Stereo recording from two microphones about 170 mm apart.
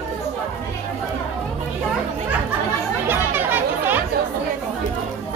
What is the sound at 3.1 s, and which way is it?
Chatter, 10° right (ahead or behind).